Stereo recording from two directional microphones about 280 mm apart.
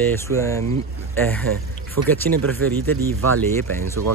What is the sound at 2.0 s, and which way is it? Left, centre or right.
Speech, right.